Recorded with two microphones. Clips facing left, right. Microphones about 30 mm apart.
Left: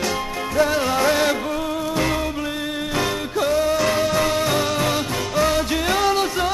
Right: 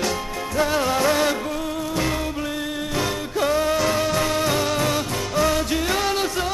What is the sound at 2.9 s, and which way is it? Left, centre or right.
Music, centre.